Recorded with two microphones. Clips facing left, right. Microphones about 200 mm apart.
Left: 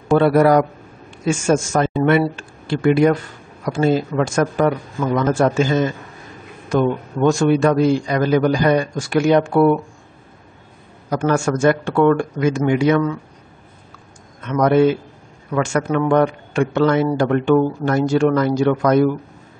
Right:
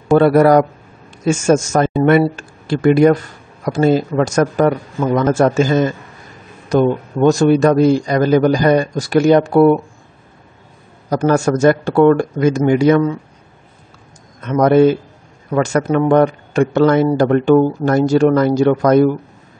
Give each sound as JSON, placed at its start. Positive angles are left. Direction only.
{"t": 0.2, "sound": "a man's voice", "side_deg": -45}
{"t": 11.1, "sound": "a man's voice", "side_deg": -40}
{"t": 14.4, "sound": "a man's voice", "side_deg": -40}